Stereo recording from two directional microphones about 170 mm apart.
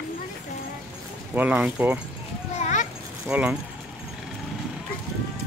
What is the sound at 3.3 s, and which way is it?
Speech, 5° right (ahead or behind).